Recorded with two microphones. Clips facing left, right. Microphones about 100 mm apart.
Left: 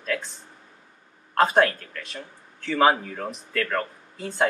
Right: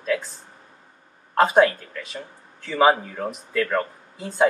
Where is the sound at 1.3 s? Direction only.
5° right (ahead or behind).